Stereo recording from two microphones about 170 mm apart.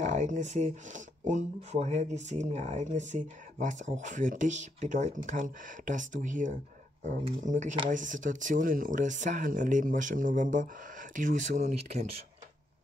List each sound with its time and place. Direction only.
0.0 s speech: 45° right (ahead or behind)